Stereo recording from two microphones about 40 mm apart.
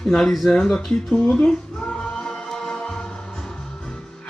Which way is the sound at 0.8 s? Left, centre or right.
Centre.